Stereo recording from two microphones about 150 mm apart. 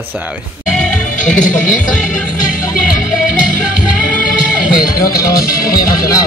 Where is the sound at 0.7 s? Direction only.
5° left (ahead or behind).